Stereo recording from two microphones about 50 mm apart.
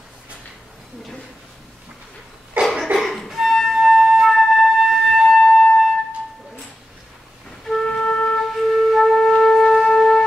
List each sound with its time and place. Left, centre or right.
2.6 s cough: right
3.0 s music: centre
3.3 s flute: centre
7.6 s music: centre
8.0 s wind instrument: left
8.5 s music: centre